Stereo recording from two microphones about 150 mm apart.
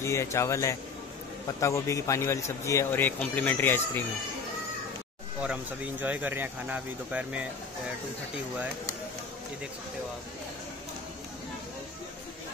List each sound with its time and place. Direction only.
0.0 s speech: 20° left (ahead or behind)
5.4 s speech: 10° right (ahead or behind)